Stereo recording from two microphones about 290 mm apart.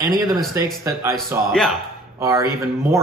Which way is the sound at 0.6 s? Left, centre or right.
Centre.